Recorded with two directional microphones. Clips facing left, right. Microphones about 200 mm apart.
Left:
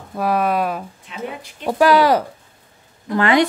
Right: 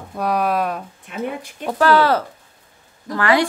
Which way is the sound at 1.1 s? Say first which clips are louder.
Right 3 dB; 50° right (ahead or behind).